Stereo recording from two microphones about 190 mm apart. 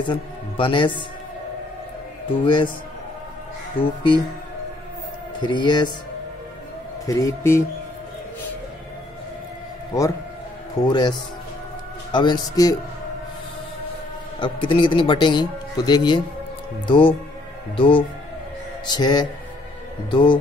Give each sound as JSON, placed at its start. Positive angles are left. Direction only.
{"t": 0.0, "sound": "a man's voice", "side_deg": 25}
{"t": 2.4, "sound": "speech", "side_deg": 25}
{"t": 3.8, "sound": "speech", "side_deg": 25}
{"t": 5.4, "sound": "speech", "side_deg": 25}
{"t": 7.1, "sound": "a man's voice", "side_deg": 15}
{"t": 10.8, "sound": "speech", "side_deg": 25}
{"t": 14.4, "sound": "speech", "side_deg": 25}